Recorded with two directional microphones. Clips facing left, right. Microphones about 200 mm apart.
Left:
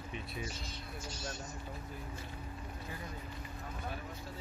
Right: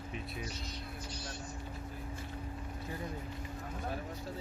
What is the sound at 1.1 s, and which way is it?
Speech, 45° left (ahead or behind).